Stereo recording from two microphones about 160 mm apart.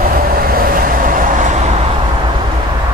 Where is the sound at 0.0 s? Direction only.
65° right (ahead or behind).